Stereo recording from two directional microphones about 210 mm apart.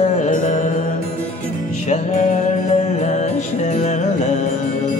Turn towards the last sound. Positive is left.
turn(degrees=35)  # may be behind; listen again after turning